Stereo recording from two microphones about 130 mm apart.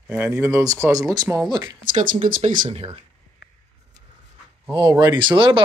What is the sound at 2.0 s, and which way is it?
Speech, 90° right.